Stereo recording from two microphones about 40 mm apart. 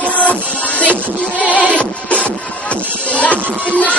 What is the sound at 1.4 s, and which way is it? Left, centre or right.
Music, left.